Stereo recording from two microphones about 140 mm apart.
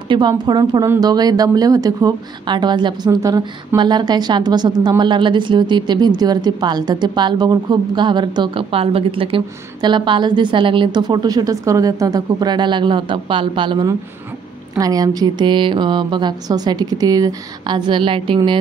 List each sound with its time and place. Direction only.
0.1 s speech: 30° right (ahead or behind)